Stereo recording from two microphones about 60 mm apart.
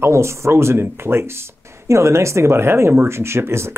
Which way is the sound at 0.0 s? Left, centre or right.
Right.